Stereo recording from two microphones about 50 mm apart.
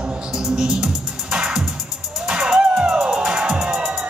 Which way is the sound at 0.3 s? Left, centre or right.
Centre.